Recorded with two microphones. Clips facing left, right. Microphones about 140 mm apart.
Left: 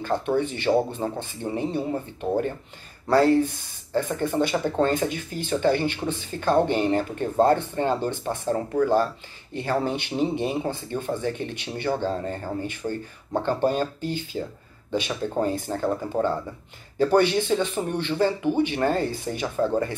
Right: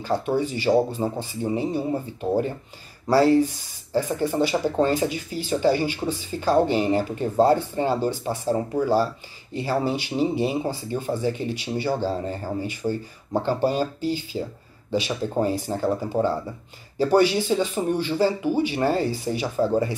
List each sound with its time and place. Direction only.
0.4 s speech: 60° left (ahead or behind)
0.7 s speech: 10° right (ahead or behind)